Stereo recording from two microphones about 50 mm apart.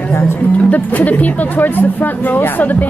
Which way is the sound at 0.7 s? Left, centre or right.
Left.